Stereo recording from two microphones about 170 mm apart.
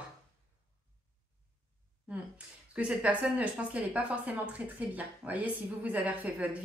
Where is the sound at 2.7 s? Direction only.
5° right (ahead or behind).